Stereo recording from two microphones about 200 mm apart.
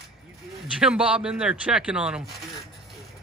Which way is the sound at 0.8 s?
5° right (ahead or behind).